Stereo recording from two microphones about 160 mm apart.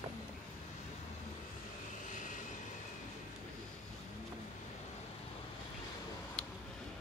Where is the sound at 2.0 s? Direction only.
50° left (ahead or behind).